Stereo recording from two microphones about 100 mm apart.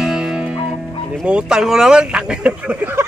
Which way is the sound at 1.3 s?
10° right (ahead or behind).